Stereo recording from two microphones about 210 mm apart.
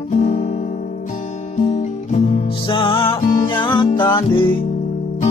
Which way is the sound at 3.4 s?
20° left (ahead or behind).